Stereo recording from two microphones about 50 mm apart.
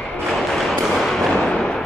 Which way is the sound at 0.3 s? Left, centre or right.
Centre.